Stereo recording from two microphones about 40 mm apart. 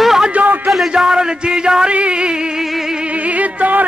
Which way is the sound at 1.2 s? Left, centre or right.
Right.